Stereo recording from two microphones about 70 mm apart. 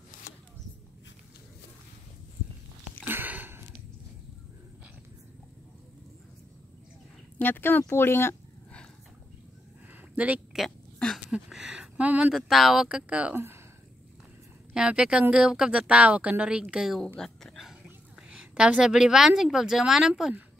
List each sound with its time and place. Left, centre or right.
3.1 s a sound: right
7.3 s speech: left
10.1 s speech: right
11.2 s a sound: centre
12.0 s speech: centre
12.4 s speech: centre
12.8 s a woman's voice: centre
13.3 s speech: right
14.7 s a woman's voice: centre
18.3 s a woman's voice: centre